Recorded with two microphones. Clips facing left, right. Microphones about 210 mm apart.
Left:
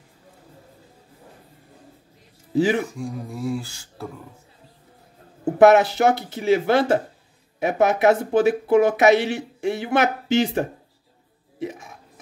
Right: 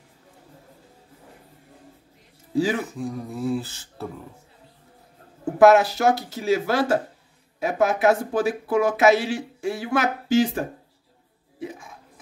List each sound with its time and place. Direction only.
2.5 s speech: 20° left (ahead or behind)
2.9 s beatboxing: 5° right (ahead or behind)
5.6 s speech: 20° left (ahead or behind)